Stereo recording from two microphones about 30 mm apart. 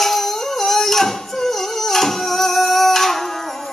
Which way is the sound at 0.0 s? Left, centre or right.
Centre.